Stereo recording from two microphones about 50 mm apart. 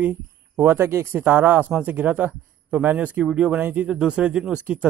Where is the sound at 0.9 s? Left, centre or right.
Right.